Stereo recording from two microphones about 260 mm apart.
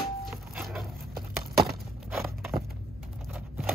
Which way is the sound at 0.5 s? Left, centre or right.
Centre.